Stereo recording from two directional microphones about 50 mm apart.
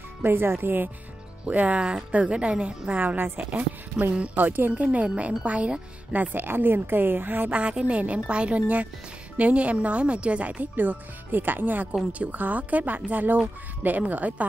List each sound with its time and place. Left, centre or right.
0.2 s speech: right
1.5 s a woman's voice: right
7.5 s a woman's voice: right